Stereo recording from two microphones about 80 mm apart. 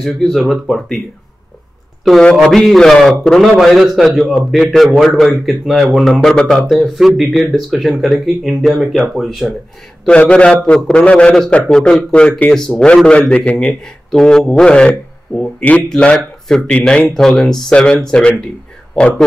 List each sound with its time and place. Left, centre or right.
0.0 s a man's voice: centre
2.3 s a man's voice: centre
10.0 s speech: centre